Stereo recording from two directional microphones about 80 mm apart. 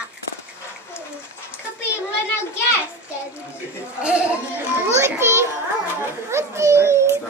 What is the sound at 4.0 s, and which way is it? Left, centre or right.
Speech, centre.